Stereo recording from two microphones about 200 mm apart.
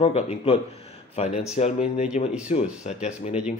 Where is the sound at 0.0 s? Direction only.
30° left (ahead or behind).